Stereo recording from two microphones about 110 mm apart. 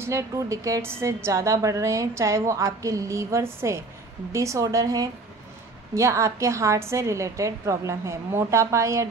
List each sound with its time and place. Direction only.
0.0 s a woman's voice: 30° right (ahead or behind)